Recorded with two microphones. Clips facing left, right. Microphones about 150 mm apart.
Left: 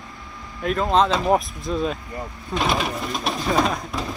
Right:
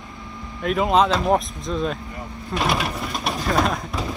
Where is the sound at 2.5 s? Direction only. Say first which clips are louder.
Even; centre (ahead or behind).